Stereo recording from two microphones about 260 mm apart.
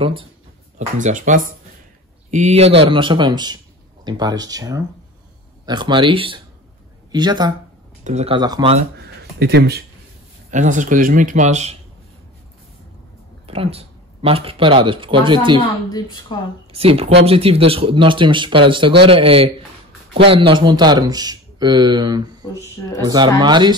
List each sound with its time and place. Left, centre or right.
0.7 s speech: right
9.4 s speech: right
13.5 s speech: right
15.6 s a woman's voice: centre
16.7 s speech: right
22.4 s speech: centre
23.0 s speech: centre